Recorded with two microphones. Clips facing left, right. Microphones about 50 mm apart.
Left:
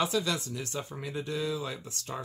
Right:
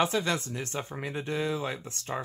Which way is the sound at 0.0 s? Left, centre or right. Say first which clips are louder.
Right 2 dB; right.